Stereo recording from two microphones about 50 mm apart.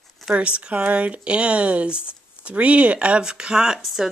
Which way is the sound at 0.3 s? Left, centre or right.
Right.